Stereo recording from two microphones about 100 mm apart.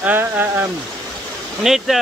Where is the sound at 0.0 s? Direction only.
20° right (ahead or behind).